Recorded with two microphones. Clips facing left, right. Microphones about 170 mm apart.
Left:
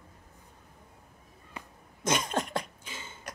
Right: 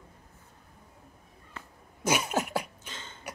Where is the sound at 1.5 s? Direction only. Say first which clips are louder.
Left 2 dB; 15° left (ahead or behind).